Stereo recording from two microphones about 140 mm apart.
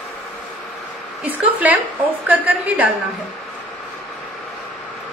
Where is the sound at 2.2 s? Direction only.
10° right (ahead or behind).